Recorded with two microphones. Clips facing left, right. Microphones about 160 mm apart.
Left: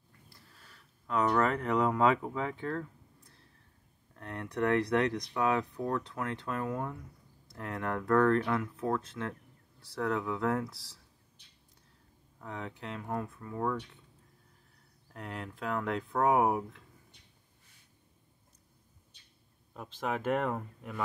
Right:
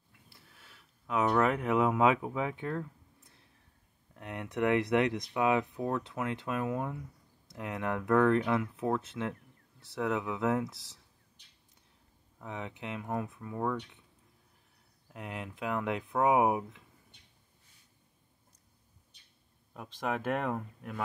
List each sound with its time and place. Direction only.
1.0 s speech: 10° right (ahead or behind)
4.1 s speech: 15° right (ahead or behind)
5.3 s speech: 10° right (ahead or behind)
12.4 s speech: 15° right (ahead or behind)
15.1 s speech: 15° right (ahead or behind)
19.7 s speech: 5° right (ahead or behind)